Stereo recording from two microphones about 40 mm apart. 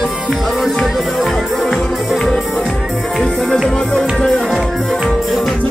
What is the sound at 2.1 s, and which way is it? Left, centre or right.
Music, centre.